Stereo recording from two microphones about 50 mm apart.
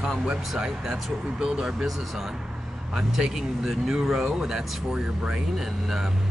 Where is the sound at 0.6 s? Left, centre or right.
Centre.